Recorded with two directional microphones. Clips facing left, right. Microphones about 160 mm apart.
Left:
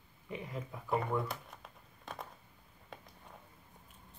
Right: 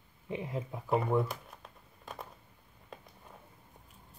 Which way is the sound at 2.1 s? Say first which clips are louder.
Right 1 dB; centre (ahead or behind).